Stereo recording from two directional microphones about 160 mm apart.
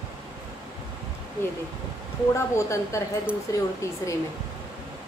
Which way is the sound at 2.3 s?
20° left (ahead or behind).